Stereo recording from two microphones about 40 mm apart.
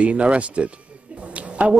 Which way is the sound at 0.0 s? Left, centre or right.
Right.